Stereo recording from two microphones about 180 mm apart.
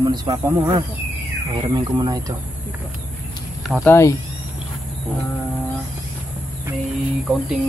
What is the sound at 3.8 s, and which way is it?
Speech, 15° left (ahead or behind).